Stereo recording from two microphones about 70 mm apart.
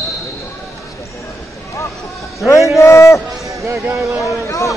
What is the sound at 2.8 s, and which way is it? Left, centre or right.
Speech, left.